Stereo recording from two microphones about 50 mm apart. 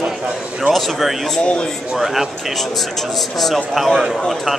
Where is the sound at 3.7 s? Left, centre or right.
Centre.